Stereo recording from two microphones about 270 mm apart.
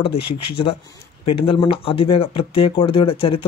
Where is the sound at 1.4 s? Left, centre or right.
Centre.